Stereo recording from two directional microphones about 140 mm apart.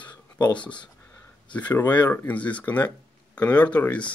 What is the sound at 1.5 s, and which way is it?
Speech, 10° left (ahead or behind).